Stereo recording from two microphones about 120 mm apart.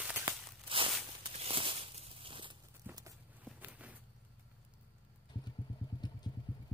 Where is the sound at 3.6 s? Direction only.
10° right (ahead or behind).